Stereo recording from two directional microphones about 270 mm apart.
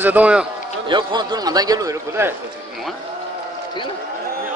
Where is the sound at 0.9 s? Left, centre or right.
Centre.